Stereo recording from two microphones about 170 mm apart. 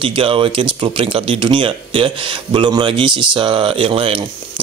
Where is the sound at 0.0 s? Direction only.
30° right (ahead or behind).